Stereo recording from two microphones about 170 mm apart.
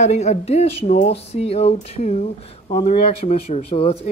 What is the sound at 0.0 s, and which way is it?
Speech, 40° left (ahead or behind).